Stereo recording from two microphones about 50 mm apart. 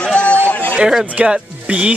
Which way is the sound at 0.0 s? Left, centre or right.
Left.